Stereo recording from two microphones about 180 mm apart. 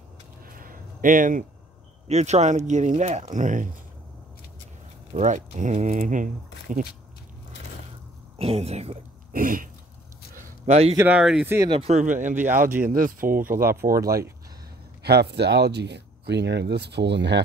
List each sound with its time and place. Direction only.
0.5 s a sound: 50° right (ahead or behind)
2.0 s speech: 40° right (ahead or behind)
5.1 s speech: 40° right (ahead or behind)
8.4 s speech: 35° right (ahead or behind)
9.3 s speech: 50° right (ahead or behind)
10.3 s a sound: 40° right (ahead or behind)
11.0 s speech: 5° right (ahead or behind)
11.5 s speech: 20° right (ahead or behind)
11.8 s speech: 45° right (ahead or behind)
15.0 s speech: 65° right (ahead or behind)